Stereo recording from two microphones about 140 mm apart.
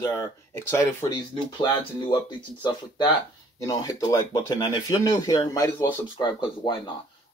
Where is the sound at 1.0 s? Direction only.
35° left (ahead or behind).